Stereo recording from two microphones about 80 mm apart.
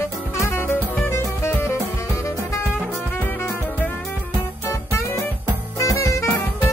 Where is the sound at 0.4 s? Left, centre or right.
Left.